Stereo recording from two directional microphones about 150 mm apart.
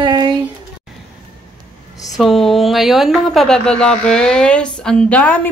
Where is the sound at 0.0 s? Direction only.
30° right (ahead or behind).